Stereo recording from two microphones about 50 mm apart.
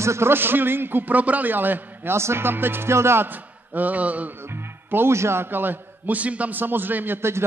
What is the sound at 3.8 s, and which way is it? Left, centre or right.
Mantra, right.